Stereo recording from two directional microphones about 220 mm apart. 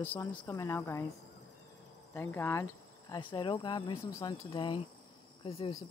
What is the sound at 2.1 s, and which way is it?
Speech, 10° left (ahead or behind).